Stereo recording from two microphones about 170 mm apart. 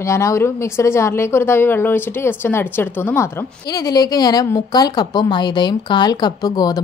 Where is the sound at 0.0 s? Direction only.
15° left (ahead or behind).